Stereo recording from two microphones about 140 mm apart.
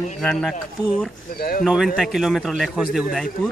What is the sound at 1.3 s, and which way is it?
Speech, 90° left.